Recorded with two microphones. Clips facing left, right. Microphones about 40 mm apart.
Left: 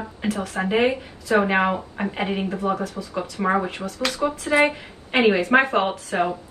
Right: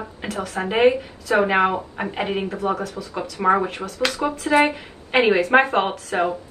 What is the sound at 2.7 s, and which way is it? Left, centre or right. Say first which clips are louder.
Speech: even; right.